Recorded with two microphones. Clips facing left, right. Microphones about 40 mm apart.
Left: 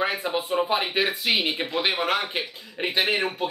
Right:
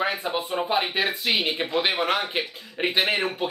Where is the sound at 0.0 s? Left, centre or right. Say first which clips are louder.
Even; centre.